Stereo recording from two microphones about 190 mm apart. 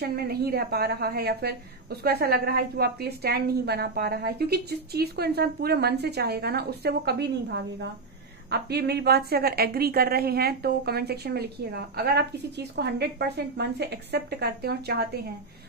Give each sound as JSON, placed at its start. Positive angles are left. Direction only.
{"t": 0.0, "sound": "a woman's voice", "side_deg": -55}